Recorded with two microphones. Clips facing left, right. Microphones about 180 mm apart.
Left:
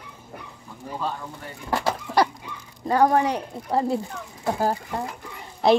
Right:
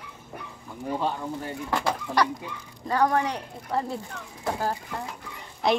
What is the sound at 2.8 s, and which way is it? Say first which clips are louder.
Speech: left 4 dB; 30° left (ahead or behind).